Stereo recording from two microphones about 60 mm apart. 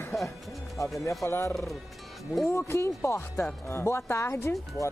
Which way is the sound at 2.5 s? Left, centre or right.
Left.